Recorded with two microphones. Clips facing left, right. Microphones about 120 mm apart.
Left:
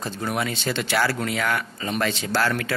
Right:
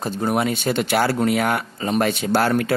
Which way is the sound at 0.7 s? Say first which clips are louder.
Right 2 dB; 30° right (ahead or behind).